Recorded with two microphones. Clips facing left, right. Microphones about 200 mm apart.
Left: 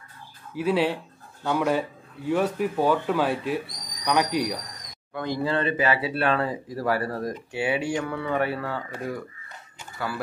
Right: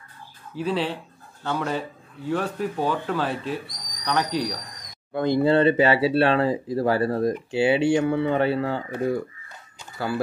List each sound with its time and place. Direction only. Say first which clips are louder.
0.6 s speech: left 2 dB; 10° left (ahead or behind)
5.1 s speech: right 7 dB; 30° right (ahead or behind)